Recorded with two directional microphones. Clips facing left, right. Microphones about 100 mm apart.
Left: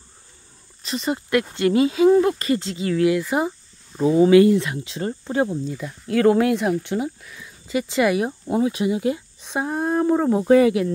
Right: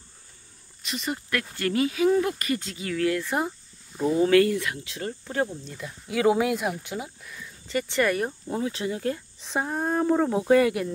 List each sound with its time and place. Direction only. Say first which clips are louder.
0.8 s speech: left 6 dB; 35° left (ahead or behind)
1.3 s speech: left 9 dB; 25° left (ahead or behind)
3.0 s speech: left 5 dB; 10° left (ahead or behind)
4.4 s speech: left 7 dB; 25° left (ahead or behind)
5.7 s speech: left 8 dB; centre (ahead or behind)
7.6 s speech: left 4 dB; 10° left (ahead or behind)